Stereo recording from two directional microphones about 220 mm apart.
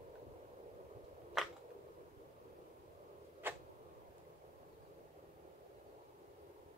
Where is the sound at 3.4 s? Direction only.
10° right (ahead or behind).